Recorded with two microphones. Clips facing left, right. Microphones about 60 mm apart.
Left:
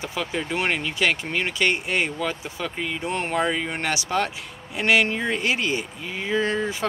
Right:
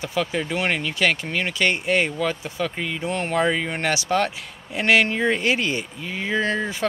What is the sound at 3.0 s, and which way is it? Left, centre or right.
Speech, left.